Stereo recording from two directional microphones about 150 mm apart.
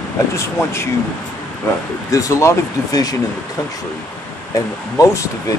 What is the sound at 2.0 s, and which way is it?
Speech, 20° left (ahead or behind).